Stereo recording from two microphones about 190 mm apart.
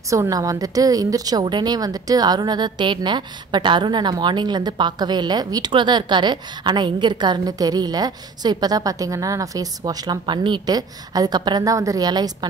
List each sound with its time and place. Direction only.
0.1 s a woman's voice: 15° right (ahead or behind)